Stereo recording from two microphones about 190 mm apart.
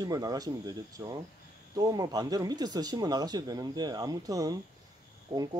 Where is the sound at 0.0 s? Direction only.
20° right (ahead or behind).